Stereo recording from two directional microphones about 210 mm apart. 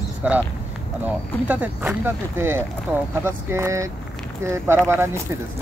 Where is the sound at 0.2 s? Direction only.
5° right (ahead or behind).